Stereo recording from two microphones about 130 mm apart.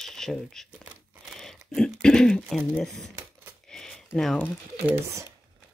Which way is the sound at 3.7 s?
5° left (ahead or behind).